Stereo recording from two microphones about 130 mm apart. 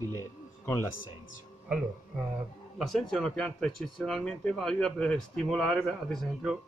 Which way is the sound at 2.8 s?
Centre (ahead or behind).